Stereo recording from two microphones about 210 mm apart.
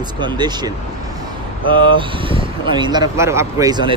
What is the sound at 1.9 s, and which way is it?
Speech, 25° right (ahead or behind).